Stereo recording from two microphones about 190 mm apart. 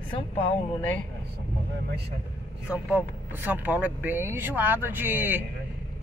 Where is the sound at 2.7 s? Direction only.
10° right (ahead or behind).